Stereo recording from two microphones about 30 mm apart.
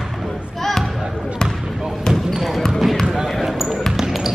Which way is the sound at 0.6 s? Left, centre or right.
Centre.